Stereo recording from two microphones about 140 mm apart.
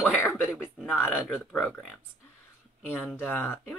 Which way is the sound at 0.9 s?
15° left (ahead or behind).